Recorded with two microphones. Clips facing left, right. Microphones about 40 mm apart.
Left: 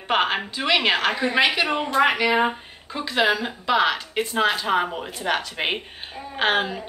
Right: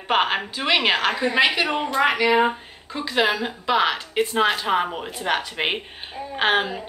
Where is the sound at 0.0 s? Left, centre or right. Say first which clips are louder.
Right 1 dB; centre.